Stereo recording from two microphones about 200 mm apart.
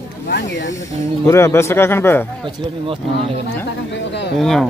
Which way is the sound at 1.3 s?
15° left (ahead or behind).